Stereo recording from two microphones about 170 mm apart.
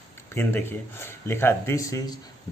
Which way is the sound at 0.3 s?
15° left (ahead or behind).